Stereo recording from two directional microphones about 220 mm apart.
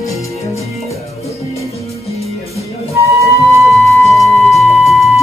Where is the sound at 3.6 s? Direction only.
Centre (ahead or behind).